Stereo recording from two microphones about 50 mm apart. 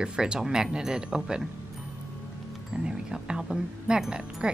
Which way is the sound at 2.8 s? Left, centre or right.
Centre.